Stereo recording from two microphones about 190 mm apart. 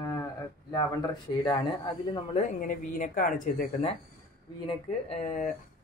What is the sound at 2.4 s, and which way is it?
Speech, 45° left (ahead or behind).